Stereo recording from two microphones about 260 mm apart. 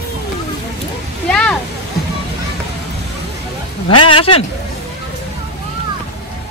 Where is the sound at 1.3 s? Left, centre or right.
Centre.